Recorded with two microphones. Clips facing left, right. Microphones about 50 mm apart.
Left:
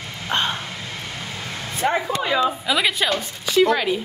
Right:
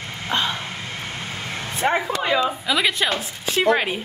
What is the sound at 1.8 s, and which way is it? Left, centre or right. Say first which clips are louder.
Speech: even; right.